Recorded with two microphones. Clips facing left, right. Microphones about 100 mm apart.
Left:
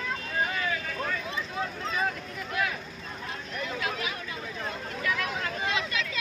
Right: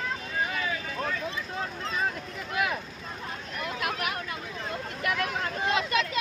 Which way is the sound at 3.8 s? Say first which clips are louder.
Right 2 dB; 60° right (ahead or behind).